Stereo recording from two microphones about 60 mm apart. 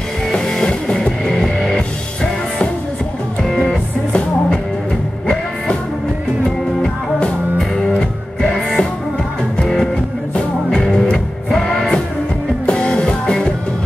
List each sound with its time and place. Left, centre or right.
0.3 s music: centre
3.4 s music: centre
7.2 s music: centre
12.6 s music: centre